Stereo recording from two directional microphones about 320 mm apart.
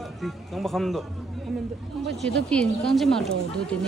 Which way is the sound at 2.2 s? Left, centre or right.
Centre.